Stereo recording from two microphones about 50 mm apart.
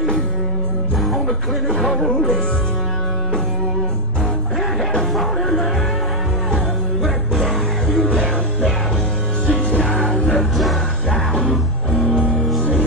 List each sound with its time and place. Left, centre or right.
1.0 s music: centre
1.7 s speech: left
5.1 s music: centre
8.0 s music: left
9.5 s music: left